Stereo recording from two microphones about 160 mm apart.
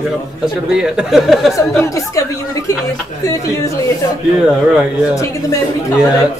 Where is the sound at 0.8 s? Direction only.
5° right (ahead or behind).